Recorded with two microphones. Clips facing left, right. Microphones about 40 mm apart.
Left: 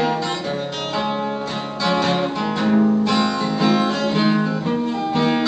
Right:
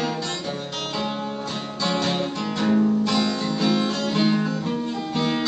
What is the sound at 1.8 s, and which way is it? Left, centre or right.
Music, centre.